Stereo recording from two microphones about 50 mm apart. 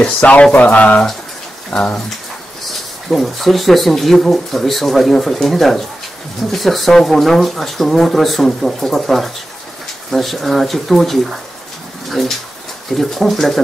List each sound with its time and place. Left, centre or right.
0.0 s speech: left
1.7 s speech: centre
3.1 s speech: centre